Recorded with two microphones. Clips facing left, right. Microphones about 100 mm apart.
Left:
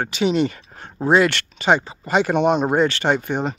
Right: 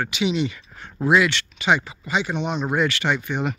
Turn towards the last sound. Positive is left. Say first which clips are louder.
# left 3 dB
turn(degrees=40)  # may be behind; listen again after turning